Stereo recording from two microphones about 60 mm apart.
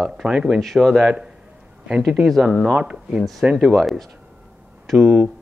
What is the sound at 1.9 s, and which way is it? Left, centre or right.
Speech, centre.